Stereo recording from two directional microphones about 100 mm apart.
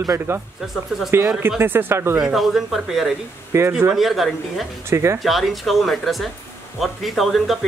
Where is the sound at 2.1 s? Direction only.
5° right (ahead or behind).